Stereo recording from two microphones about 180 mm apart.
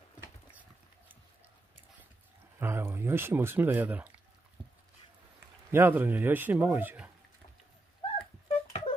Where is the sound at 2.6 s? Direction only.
10° right (ahead or behind).